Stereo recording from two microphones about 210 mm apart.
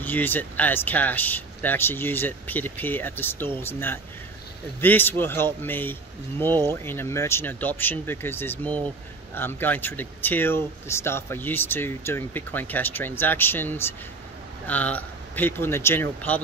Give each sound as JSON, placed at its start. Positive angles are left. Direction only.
{"t": 0.0, "sound": "speech", "side_deg": 10}